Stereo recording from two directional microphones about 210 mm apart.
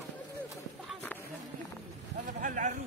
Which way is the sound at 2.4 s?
40° right (ahead or behind).